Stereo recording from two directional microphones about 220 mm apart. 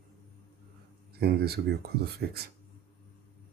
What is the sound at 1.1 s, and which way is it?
Speech, 45° right (ahead or behind).